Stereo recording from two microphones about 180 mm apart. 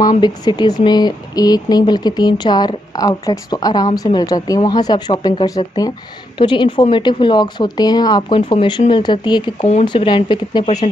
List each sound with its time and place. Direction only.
0.2 s speech: 25° left (ahead or behind)